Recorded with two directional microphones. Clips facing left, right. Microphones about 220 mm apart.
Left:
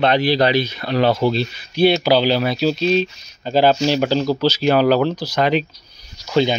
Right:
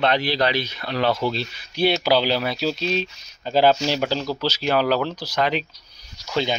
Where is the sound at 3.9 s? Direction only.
5° right (ahead or behind).